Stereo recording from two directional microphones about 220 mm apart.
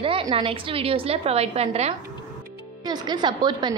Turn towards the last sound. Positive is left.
turn(degrees=-20)  # may be behind; listen again after turning